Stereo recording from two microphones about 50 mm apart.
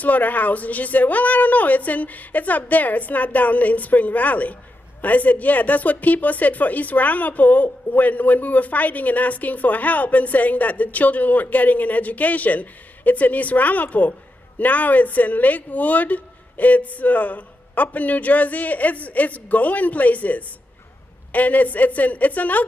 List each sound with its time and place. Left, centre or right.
0.0 s speech: left